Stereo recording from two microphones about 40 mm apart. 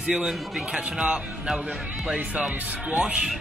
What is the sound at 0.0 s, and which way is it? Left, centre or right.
Speech, right.